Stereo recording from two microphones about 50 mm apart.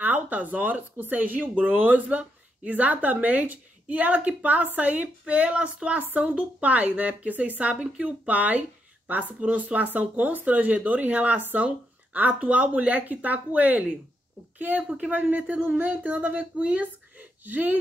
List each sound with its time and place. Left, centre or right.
0.0 s a woman's voice: right